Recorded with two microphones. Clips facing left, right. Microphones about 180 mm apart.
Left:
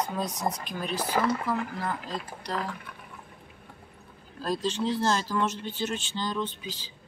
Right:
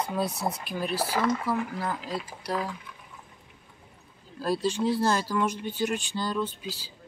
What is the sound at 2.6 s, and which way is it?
Speech, 60° left (ahead or behind).